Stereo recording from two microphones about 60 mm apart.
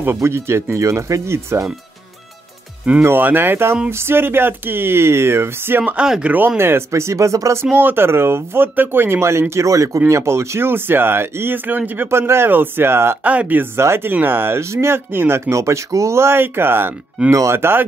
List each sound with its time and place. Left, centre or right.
0.0 s speech: right
3.0 s speech: right
5.9 s speech: centre
6.3 s speech: right
7.8 s speech: right
12.1 s speech: right
13.2 s speech: right
13.7 s speech: right
15.5 s speech: right
17.3 s speech: right